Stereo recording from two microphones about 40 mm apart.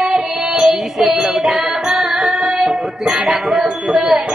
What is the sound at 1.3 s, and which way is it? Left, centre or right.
Music, right.